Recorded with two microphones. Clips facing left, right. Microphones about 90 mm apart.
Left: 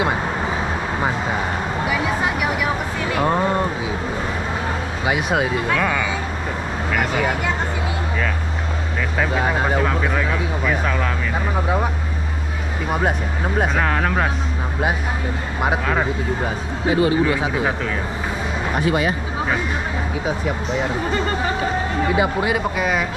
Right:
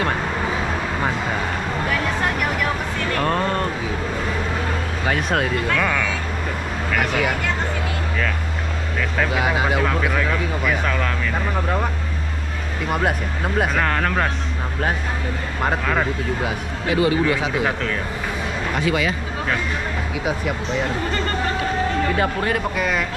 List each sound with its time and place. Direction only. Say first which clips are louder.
1.9 s a sound: left 1 dB; 10° left (ahead or behind)
5.0 s speech: left 1 dB; 10° left (ahead or behind)
9.3 s speech: left 1 dB; 5° right (ahead or behind)
15.6 s speech: left 1 dB; 10° left (ahead or behind)
16.8 s speech: left 1 dB; 30° left (ahead or behind)
17.2 s speech: left 1 dB; 20° left (ahead or behind)
18.8 s speech: left 2 dB; 25° left (ahead or behind)
20.8 s speech: left 3 dB; 10° left (ahead or behind)